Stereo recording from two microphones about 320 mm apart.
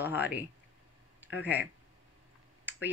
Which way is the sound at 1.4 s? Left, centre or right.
Centre.